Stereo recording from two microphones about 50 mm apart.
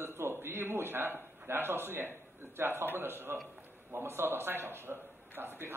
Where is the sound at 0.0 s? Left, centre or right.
Right.